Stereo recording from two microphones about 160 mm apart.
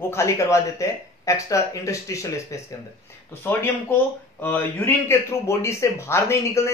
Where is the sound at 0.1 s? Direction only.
20° left (ahead or behind).